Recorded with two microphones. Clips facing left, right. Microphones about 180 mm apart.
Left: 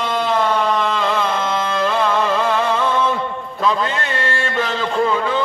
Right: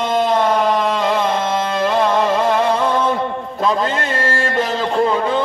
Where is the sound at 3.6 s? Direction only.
35° right (ahead or behind).